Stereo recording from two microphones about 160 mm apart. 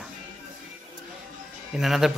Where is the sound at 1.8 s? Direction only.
Centre (ahead or behind).